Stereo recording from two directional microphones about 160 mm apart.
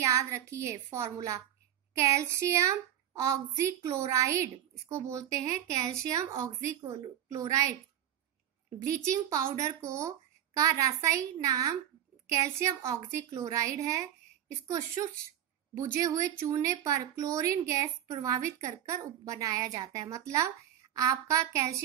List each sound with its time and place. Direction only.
0.0 s a woman's voice: 20° right (ahead or behind)
8.8 s speech: 20° right (ahead or behind)
15.8 s speech: 20° right (ahead or behind)